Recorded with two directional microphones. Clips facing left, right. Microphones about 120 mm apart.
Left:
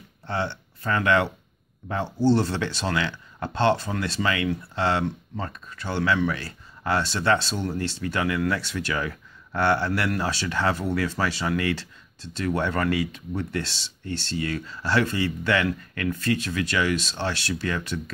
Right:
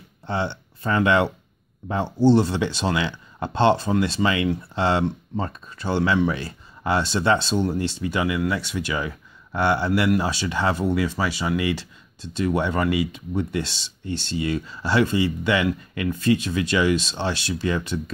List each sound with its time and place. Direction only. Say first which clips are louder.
0.3 s speech: right 2 dB; 20° right (ahead or behind)